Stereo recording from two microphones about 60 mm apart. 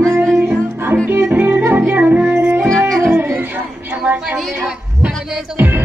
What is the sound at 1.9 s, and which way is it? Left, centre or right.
Music, right.